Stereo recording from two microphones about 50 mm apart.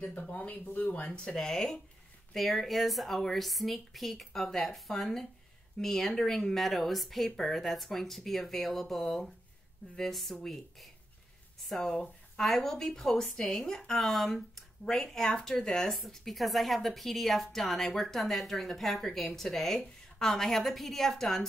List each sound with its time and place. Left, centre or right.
0.0 s speech: left
1.1 s a woman's voice: centre